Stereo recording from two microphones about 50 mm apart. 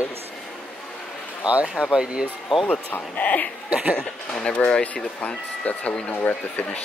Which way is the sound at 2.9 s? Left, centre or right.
Left.